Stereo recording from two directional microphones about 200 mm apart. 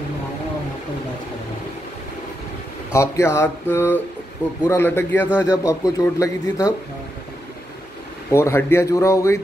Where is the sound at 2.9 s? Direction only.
15° left (ahead or behind).